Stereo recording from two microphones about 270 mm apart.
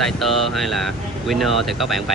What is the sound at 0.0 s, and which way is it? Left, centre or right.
Speech, centre.